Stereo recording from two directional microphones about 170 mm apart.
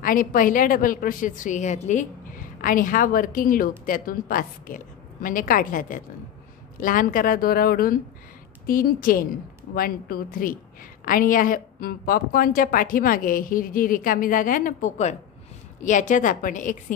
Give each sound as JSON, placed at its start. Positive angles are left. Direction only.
{"t": 0.0, "sound": "a woman's voice", "side_deg": 55}